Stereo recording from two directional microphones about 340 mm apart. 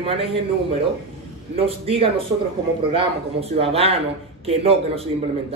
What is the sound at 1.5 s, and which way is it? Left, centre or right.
Speech, centre.